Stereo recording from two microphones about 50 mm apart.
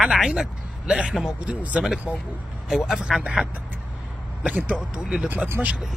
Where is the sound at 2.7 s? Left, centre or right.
Centre.